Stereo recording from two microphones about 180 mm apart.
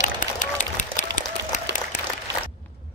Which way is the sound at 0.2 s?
45° left (ahead or behind).